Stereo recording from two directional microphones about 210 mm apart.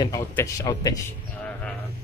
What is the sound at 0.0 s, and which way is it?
A man's voice, 15° left (ahead or behind).